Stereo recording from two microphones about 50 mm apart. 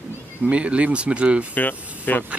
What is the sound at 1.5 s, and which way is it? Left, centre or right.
Speech, left.